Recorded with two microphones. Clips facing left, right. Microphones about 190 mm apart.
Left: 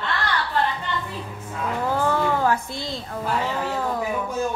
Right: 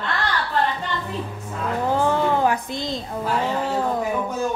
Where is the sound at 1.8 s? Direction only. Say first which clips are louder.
Right 2 dB; 15° right (ahead or behind).